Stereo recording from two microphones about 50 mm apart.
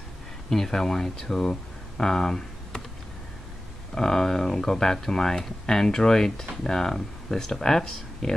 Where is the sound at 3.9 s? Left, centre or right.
Centre.